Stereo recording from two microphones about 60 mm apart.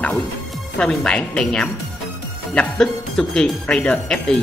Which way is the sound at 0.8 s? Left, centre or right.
Centre.